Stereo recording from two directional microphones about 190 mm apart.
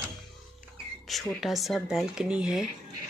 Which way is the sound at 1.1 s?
Centre (ahead or behind).